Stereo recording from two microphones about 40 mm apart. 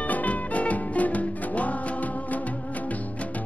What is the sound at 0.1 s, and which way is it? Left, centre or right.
Music, left.